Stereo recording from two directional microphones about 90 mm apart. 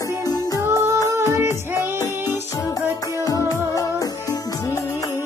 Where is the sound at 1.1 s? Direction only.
30° right (ahead or behind).